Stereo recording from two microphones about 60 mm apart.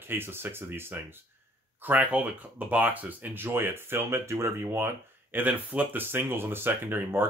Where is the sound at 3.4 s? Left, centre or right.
Right.